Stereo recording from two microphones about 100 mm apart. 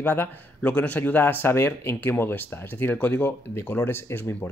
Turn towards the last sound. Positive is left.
turn(degrees=20)  # may be behind; listen again after turning